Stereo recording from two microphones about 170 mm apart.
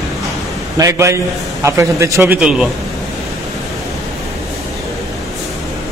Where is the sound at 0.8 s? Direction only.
20° right (ahead or behind).